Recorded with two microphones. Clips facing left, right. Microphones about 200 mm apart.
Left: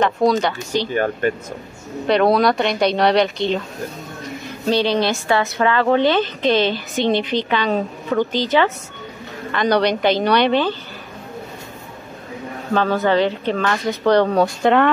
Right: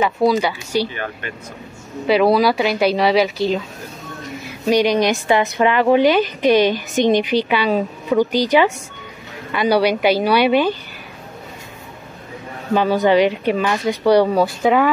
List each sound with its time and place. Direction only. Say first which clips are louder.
0.0 s a woman's voice: even; 5° right (ahead or behind)
0.9 s speech: left 10 dB; 45° left (ahead or behind)
2.0 s a woman's voice: right 1 dB; 5° right (ahead or behind)
12.7 s a woman's voice: right 3 dB; 15° right (ahead or behind)